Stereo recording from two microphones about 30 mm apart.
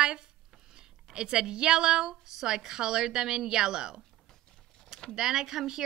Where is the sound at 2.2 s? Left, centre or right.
Centre.